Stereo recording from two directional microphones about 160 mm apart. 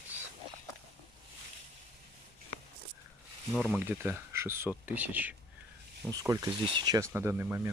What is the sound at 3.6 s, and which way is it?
Speech, 10° right (ahead or behind).